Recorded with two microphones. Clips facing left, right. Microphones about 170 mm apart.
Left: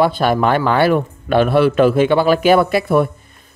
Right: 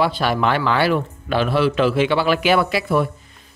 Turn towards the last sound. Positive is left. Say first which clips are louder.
# left 5 dB
turn(degrees=50)  # may be behind; listen again after turning